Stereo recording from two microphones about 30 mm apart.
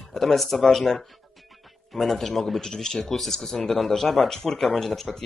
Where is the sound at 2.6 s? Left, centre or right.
Centre.